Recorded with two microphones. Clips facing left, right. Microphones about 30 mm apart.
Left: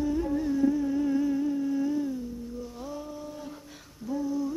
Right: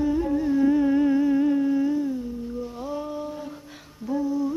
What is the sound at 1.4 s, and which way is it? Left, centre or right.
Humming, right.